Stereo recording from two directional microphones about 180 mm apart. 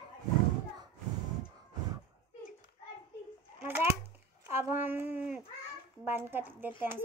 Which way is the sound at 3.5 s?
10° right (ahead or behind).